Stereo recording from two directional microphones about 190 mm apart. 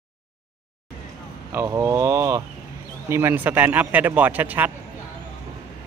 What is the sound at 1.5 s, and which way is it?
A man's voice, 15° right (ahead or behind).